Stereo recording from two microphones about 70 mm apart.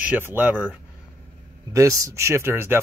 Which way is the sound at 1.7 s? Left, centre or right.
Right.